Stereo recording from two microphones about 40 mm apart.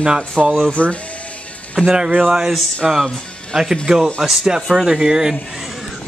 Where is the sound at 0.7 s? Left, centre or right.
Left.